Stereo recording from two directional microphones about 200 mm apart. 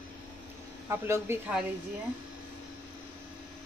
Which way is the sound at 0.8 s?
10° right (ahead or behind).